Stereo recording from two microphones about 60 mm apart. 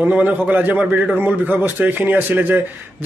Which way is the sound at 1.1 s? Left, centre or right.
Right.